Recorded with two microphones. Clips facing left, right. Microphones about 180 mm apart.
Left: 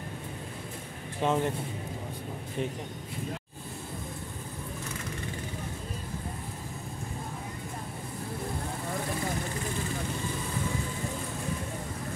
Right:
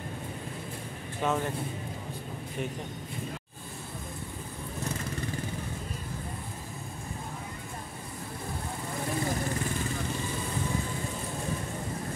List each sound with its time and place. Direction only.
1.2 s speech: 25° left (ahead or behind)